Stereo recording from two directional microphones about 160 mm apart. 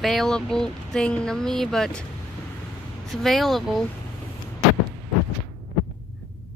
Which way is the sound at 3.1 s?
Centre (ahead or behind).